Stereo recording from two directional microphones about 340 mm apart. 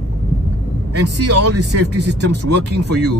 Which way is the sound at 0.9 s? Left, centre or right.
Right.